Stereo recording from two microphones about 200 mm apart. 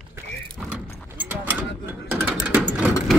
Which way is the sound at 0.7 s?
10° right (ahead or behind).